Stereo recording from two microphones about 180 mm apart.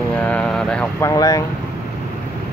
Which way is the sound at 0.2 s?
5° left (ahead or behind).